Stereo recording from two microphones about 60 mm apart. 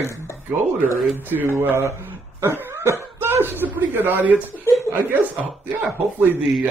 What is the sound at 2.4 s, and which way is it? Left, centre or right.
Cough, right.